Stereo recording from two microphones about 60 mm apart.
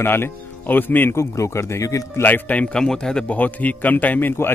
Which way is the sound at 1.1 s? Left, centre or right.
Left.